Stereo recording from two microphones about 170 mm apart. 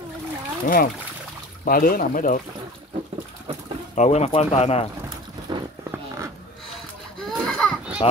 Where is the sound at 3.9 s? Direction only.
40° left (ahead or behind).